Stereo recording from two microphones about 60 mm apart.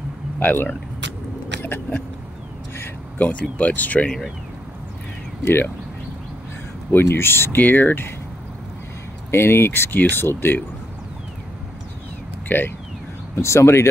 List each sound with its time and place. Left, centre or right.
0.4 s speech: left
1.6 s a sound: left
3.2 s speech: left
6.9 s speech: left
9.3 s speech: left
12.4 s speech: left
13.4 s speech: left